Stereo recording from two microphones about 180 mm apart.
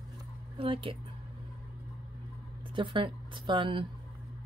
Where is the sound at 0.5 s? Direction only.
30° right (ahead or behind).